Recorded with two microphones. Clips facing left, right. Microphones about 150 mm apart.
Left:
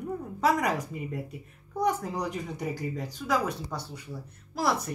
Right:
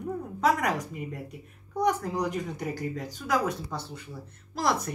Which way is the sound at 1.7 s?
5° left (ahead or behind).